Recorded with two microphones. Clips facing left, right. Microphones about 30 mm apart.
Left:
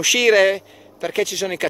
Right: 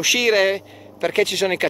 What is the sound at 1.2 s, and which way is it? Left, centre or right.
Speech, right.